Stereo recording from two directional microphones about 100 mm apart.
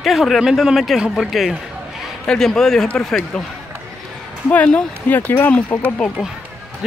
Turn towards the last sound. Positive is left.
turn(degrees=20)  # may be behind; listen again after turning